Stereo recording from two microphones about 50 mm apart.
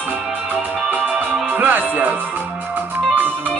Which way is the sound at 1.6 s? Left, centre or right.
Right.